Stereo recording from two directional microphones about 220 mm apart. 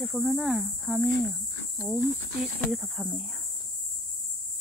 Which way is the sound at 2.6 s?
Centre (ahead or behind).